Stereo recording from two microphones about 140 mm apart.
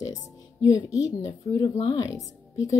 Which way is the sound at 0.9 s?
25° left (ahead or behind).